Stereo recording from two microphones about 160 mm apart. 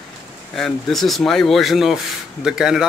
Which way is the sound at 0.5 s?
Centre (ahead or behind).